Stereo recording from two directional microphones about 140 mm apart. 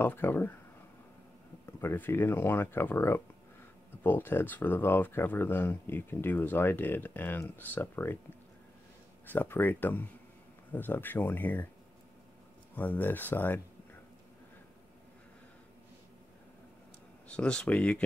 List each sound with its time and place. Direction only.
0.0 s speech: 15° left (ahead or behind)
1.7 s speech: 15° left (ahead or behind)
9.2 s speech: 15° left (ahead or behind)
12.7 s speech: 10° left (ahead or behind)
17.3 s speech: 5° left (ahead or behind)